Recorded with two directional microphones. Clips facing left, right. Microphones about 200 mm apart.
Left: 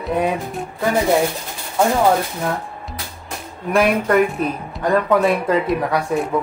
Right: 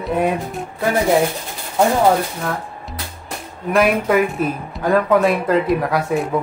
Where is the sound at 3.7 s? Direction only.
5° right (ahead or behind).